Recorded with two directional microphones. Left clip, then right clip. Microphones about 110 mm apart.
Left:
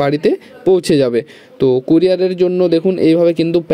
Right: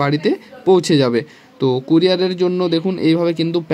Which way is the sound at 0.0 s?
25° left (ahead or behind).